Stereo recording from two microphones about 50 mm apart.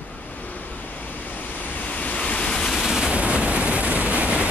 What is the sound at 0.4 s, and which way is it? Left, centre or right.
Vehicle, left.